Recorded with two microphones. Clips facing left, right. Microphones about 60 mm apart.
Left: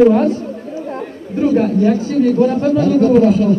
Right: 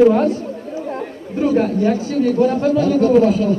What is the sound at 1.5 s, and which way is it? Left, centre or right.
A man's voice, centre.